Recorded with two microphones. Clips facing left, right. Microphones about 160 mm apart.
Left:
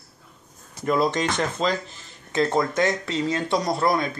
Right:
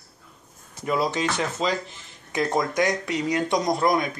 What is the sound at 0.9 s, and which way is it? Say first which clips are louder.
Speech: left 2 dB; 10° right (ahead or behind).